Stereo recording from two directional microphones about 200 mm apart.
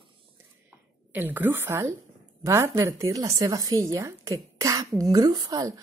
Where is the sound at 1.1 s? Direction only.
10° right (ahead or behind).